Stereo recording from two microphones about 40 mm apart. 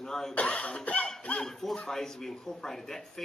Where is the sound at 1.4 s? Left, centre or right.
Centre.